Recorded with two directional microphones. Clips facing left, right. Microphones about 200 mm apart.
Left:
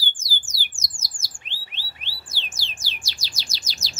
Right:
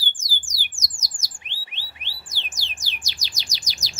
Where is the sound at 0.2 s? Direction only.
15° right (ahead or behind).